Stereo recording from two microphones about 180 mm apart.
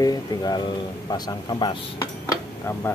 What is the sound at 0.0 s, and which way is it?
Speech, 20° left (ahead or behind).